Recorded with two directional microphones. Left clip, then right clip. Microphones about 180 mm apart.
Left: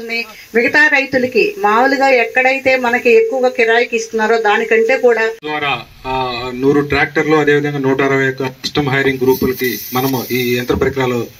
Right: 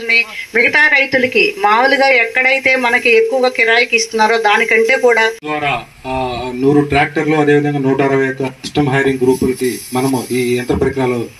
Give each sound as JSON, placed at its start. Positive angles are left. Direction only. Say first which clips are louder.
{"t": 0.7, "sound": "a woman's voice", "louder": "even", "side_deg": 35}
{"t": 5.5, "sound": "speech", "louder": "right 1 dB", "side_deg": -55}